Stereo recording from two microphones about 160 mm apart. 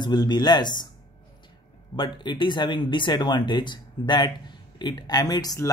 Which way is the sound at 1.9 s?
30° left (ahead or behind).